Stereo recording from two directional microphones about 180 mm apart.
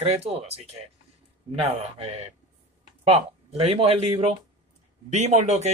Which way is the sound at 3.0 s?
35° right (ahead or behind).